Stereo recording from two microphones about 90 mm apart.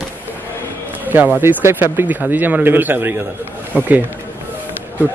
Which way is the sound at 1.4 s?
30° right (ahead or behind).